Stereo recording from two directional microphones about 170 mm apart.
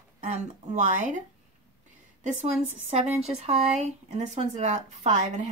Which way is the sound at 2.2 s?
40° right (ahead or behind).